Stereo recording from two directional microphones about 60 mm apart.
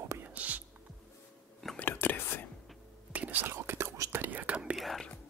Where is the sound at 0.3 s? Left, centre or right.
Right.